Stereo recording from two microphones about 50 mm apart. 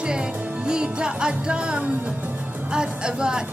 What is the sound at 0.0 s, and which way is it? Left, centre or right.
Music, centre.